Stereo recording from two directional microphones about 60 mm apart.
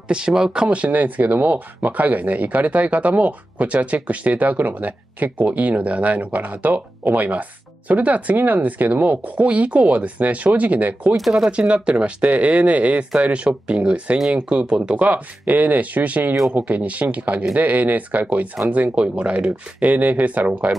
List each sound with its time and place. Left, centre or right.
0.1 s speech: centre